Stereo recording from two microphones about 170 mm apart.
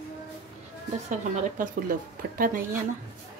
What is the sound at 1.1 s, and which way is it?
A woman's voice, 55° right (ahead or behind).